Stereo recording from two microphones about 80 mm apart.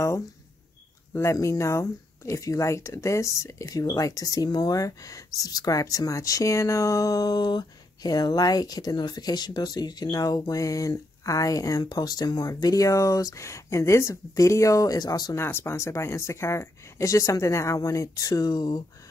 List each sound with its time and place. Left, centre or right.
1.1 s speech: left
15.3 s speech: left